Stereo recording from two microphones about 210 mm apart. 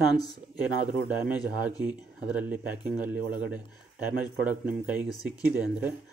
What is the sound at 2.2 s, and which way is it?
Speech, 5° right (ahead or behind).